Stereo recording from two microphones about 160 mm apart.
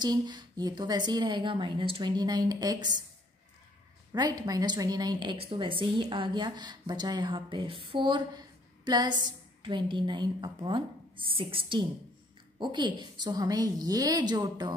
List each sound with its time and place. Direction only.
0.0 s a woman's voice: 25° right (ahead or behind)
4.1 s a woman's voice: 25° right (ahead or behind)